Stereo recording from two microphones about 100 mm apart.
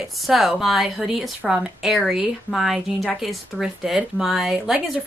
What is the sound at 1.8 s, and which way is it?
Speech, 5° right (ahead or behind).